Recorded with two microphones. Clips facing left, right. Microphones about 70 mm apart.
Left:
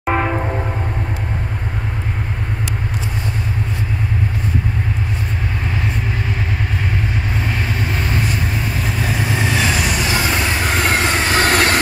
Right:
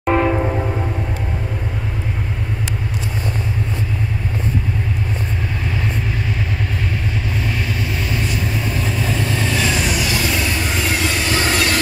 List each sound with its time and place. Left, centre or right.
0.0 s train: centre
8.8 s vehicle: centre
9.1 s vehicle: centre
9.9 s music: left
10.6 s vehicle: left